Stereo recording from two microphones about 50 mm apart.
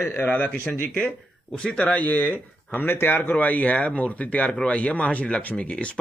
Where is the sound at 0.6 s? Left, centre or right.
Left.